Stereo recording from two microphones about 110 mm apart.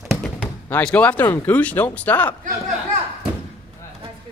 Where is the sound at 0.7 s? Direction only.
15° left (ahead or behind).